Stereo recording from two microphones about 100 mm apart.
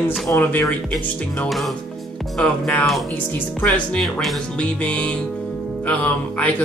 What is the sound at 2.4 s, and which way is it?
Speech, 10° left (ahead or behind).